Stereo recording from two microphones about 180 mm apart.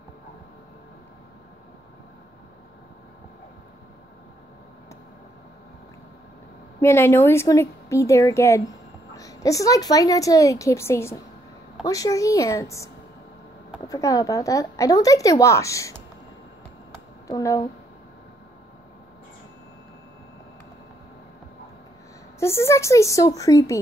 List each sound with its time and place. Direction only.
6.8 s a woman's voice: 15° left (ahead or behind)
17.3 s a woman's voice: 20° left (ahead or behind)
22.4 s a woman's voice: 15° left (ahead or behind)